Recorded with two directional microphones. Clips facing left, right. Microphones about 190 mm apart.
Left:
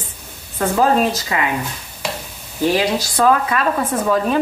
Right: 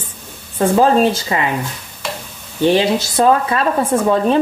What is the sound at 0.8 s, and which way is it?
Speech, 30° right (ahead or behind).